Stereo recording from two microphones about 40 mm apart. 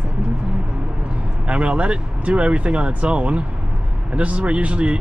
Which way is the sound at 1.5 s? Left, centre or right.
Right.